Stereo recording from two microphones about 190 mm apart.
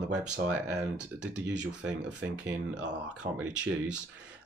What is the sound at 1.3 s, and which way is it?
Speech, 5° right (ahead or behind).